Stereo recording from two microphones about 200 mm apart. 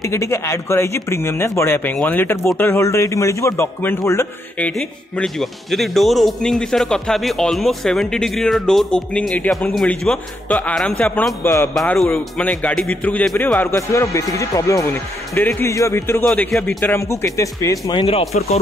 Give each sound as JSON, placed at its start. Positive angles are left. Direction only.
{"t": 0.0, "sound": "speech", "side_deg": 15}